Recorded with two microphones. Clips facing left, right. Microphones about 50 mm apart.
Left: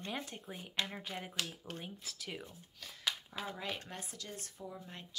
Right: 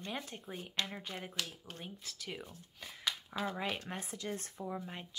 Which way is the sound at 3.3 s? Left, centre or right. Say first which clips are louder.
Right 5 dB; right.